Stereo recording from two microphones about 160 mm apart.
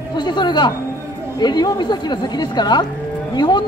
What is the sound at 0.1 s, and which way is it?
Speech, 30° left (ahead or behind).